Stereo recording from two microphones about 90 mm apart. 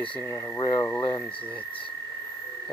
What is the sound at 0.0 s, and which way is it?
Speech, 15° left (ahead or behind).